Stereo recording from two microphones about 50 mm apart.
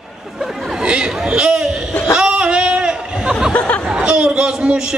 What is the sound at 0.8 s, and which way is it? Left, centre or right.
Speech, centre.